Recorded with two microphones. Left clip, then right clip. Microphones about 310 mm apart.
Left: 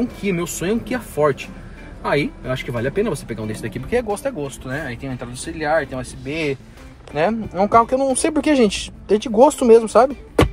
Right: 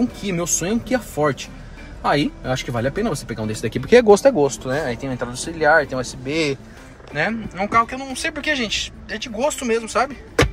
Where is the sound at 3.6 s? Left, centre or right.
Right.